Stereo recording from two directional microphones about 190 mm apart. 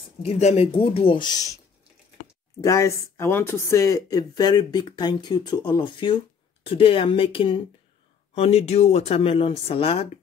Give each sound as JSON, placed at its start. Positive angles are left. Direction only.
{"t": 0.2, "sound": "speech", "side_deg": 35}
{"t": 2.6, "sound": "speech", "side_deg": 15}